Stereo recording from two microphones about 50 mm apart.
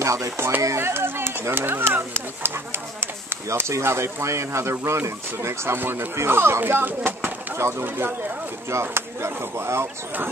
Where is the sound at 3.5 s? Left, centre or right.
Right.